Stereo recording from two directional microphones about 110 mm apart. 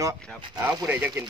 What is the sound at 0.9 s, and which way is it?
Speech, 15° right (ahead or behind).